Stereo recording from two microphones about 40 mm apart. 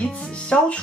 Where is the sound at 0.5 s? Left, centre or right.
Left.